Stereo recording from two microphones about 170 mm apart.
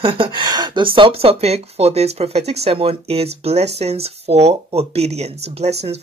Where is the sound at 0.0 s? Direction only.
30° right (ahead or behind).